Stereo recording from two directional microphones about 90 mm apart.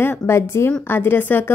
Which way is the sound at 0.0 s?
25° left (ahead or behind).